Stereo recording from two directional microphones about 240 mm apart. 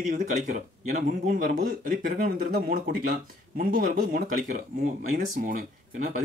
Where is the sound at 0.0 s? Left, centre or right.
Right.